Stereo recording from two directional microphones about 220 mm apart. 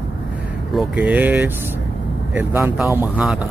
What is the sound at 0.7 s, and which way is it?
Speech, 5° right (ahead or behind).